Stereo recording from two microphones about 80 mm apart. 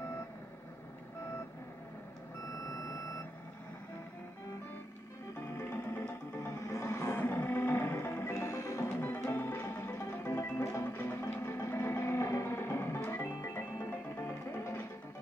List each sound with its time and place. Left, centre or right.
5.5 s music: left
6.7 s a sound: left
7.2 s music: left
9.3 s music: left